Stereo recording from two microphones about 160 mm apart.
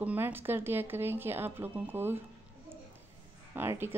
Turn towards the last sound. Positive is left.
turn(degrees=-15)  # may be behind; listen again after turning